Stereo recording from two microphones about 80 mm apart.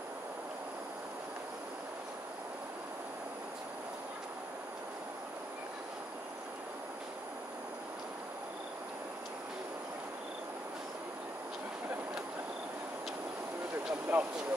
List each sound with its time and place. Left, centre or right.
14.1 s speech: centre